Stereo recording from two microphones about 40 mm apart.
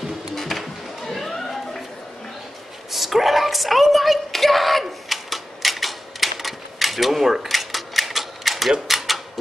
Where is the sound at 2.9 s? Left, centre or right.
Centre.